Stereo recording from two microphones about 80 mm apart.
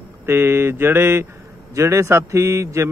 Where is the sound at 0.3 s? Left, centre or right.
Right.